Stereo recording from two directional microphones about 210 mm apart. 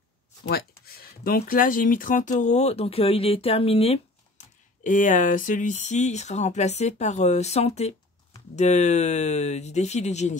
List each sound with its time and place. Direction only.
0.5 s speech: 45° left (ahead or behind)